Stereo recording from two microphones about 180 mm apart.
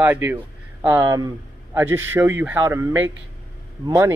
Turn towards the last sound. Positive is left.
turn(degrees=-15)  # may be behind; listen again after turning